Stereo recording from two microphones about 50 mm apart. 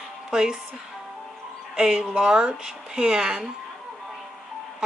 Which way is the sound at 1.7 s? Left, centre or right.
Centre.